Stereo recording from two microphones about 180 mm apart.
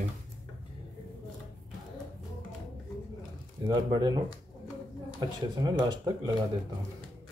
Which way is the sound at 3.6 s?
20° right (ahead or behind).